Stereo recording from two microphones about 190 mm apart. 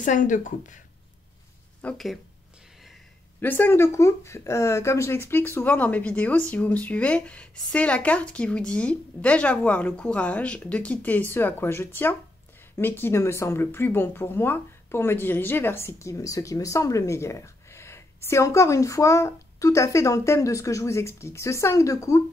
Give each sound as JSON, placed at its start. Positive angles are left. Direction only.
{"t": 0.0, "sound": "speech", "side_deg": 45}
{"t": 1.8, "sound": "speech", "side_deg": 5}
{"t": 3.3, "sound": "speech", "side_deg": 10}